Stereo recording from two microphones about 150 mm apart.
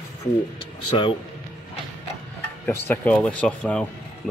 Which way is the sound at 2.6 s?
10° left (ahead or behind).